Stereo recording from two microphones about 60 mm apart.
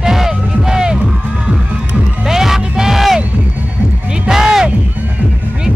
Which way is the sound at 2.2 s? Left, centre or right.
Centre.